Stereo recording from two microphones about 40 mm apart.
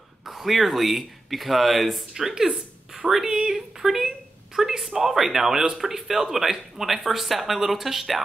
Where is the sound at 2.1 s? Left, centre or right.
Centre.